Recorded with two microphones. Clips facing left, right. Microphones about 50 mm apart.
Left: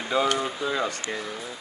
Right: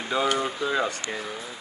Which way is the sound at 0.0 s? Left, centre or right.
Centre.